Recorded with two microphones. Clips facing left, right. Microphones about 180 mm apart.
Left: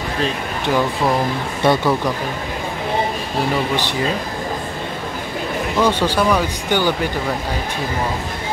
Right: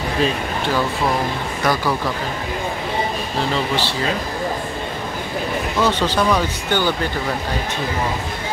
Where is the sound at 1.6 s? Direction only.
25° left (ahead or behind).